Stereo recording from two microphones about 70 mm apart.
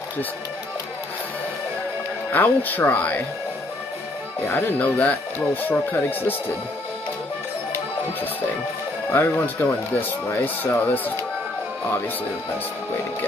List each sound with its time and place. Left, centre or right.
2.3 s speech: left
4.6 s speech: left
9.1 s speech: left